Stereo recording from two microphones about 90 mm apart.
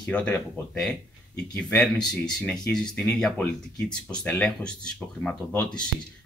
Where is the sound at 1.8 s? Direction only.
5° left (ahead or behind).